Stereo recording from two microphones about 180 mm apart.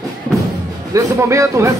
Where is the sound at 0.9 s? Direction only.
15° right (ahead or behind).